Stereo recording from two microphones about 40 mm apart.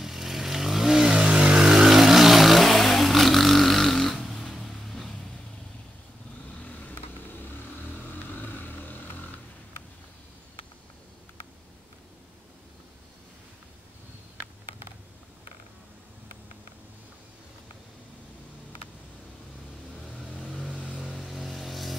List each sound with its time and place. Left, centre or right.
0.0 s vehicle: centre
4.3 s a sound: centre
8.4 s vehicle: left
21.0 s vehicle: centre